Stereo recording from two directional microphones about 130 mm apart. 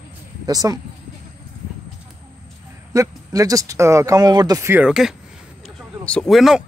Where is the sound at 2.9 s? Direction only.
25° right (ahead or behind).